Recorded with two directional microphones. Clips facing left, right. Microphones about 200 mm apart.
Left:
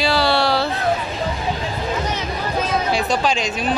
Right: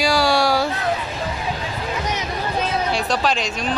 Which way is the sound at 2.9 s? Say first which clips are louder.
Left 2 dB; centre (ahead or behind).